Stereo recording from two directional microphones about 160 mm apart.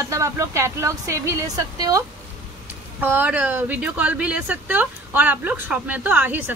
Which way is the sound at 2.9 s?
10° right (ahead or behind).